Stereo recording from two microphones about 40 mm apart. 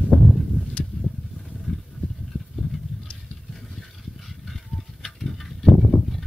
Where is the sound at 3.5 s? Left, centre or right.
Centre.